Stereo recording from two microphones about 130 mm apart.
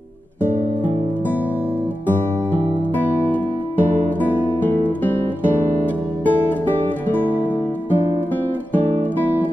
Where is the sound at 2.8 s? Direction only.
15° left (ahead or behind).